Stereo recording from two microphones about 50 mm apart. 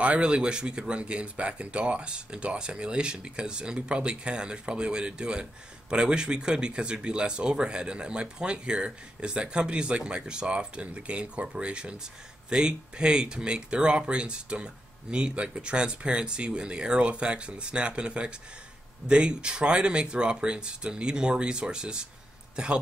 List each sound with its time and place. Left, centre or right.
0.0 s speech: right